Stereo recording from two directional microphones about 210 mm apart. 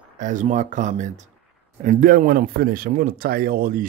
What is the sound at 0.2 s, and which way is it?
Speech, 35° right (ahead or behind).